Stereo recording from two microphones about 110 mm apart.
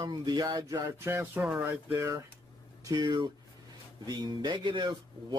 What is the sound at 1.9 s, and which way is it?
Speech, 25° right (ahead or behind).